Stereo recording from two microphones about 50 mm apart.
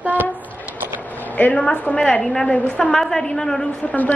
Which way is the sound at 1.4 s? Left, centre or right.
Left.